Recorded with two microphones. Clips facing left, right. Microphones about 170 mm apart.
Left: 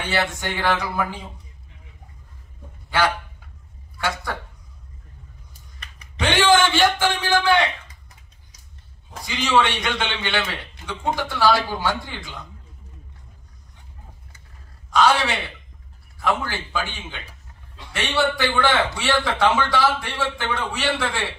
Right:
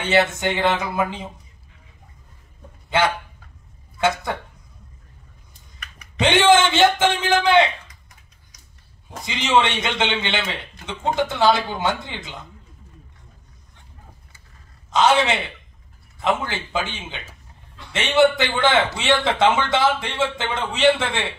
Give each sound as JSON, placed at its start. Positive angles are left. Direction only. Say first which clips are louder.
{"t": 0.0, "sound": "a man's voice", "louder": "right 6 dB", "side_deg": -20}
{"t": 2.9, "sound": "a man's voice", "louder": "right 1 dB", "side_deg": -20}
{"t": 6.1, "sound": "a man's voice", "louder": "right 2 dB", "side_deg": -20}
{"t": 9.2, "sound": "a man's voice", "louder": "right 1 dB", "side_deg": -20}
{"t": 14.9, "sound": "a man's voice", "louder": "right 1 dB", "side_deg": -20}